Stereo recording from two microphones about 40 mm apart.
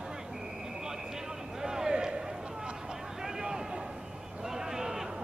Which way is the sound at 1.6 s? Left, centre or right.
Centre.